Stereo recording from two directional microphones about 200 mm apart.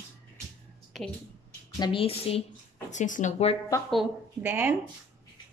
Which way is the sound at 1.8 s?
25° left (ahead or behind).